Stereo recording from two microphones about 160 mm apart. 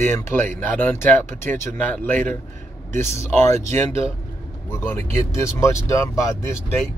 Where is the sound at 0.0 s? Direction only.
15° left (ahead or behind).